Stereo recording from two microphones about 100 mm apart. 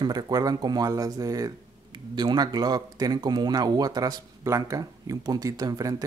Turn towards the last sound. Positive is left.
turn(degrees=-40)  # may be behind; listen again after turning